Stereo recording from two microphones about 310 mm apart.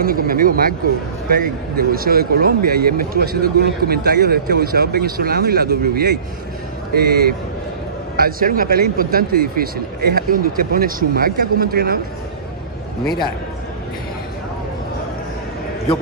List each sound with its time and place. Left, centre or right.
0.0 s speech: right